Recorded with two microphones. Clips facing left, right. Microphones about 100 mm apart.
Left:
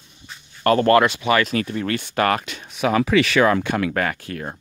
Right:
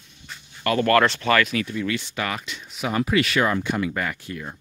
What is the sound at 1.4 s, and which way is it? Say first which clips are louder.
Speech: left 2 dB; 40° left (ahead or behind).